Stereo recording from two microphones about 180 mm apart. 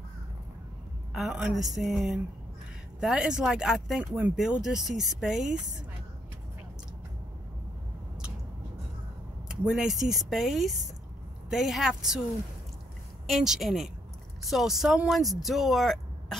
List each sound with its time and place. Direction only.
1.1 s speech: centre (ahead or behind)
9.5 s speech: 5° right (ahead or behind)
13.3 s speech: centre (ahead or behind)